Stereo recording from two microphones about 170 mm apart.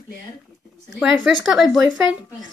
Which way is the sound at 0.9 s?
Centre (ahead or behind).